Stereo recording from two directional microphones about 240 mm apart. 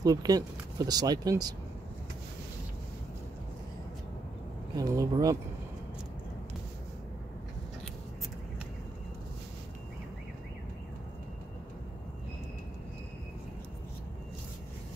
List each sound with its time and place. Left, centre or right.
0.0 s speech: centre
4.7 s speech: centre